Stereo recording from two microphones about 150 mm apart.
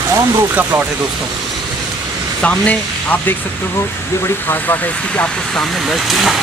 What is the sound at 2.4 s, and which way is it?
Speech, 10° left (ahead or behind).